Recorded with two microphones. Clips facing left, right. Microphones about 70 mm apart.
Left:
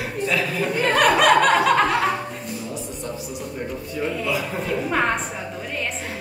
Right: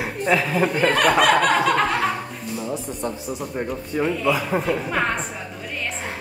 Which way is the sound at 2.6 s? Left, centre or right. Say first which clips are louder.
Right 4 dB; right.